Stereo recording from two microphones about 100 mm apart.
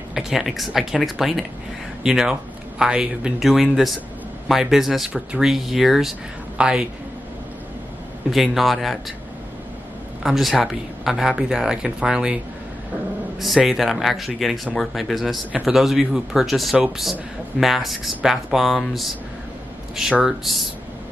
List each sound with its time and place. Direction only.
0.1 s speech: 5° right (ahead or behind)
8.3 s speech: centre (ahead or behind)
10.2 s speech: centre (ahead or behind)
13.4 s speech: centre (ahead or behind)